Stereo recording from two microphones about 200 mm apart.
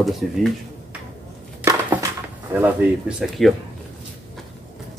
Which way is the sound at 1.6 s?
15° right (ahead or behind).